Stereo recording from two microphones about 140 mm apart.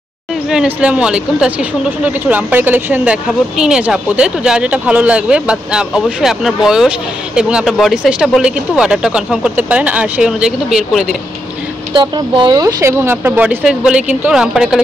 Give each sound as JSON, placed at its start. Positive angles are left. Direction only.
{"t": 0.5, "sound": "speech", "side_deg": -5}
{"t": 11.9, "sound": "speech", "side_deg": -35}